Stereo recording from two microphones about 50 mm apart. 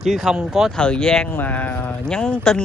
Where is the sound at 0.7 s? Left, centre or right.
Centre.